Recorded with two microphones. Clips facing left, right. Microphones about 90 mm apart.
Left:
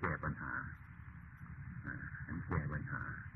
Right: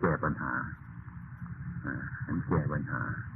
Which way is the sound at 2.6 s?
40° right (ahead or behind).